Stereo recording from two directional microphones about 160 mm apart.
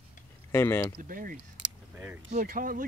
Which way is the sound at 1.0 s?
60° right (ahead or behind).